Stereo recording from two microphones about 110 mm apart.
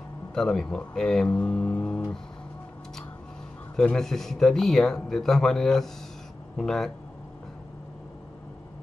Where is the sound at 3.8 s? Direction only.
5° left (ahead or behind).